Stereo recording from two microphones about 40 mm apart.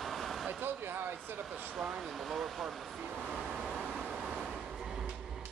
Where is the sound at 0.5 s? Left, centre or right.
Right.